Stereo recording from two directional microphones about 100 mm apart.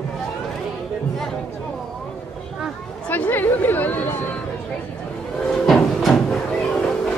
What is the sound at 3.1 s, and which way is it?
Chatter, 20° left (ahead or behind).